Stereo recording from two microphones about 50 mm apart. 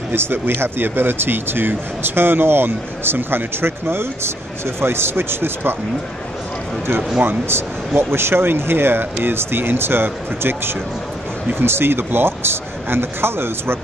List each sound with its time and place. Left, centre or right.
0.1 s speech: right
7.2 s speech: right